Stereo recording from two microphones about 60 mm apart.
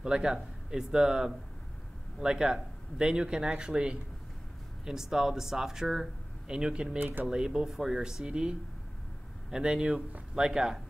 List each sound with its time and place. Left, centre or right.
0.0 s speech: centre
7.0 s speech: right
7.2 s speech: centre